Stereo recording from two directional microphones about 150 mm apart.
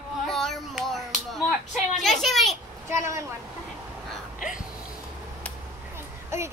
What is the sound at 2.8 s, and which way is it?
Speech, 20° right (ahead or behind).